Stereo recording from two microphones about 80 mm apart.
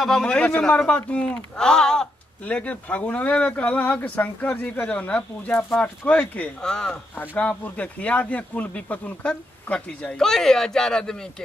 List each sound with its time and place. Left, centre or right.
0.0 s a man's voice: centre
7.2 s a man's voice: centre